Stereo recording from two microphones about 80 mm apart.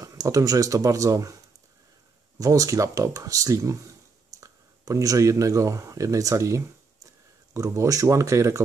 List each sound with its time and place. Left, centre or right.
0.0 s speech: right